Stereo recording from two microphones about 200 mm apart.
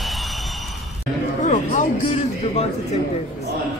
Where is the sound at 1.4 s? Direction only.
35° left (ahead or behind).